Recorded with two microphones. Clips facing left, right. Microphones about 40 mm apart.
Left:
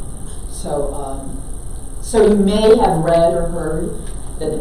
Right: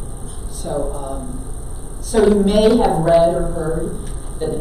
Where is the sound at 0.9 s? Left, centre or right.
Centre.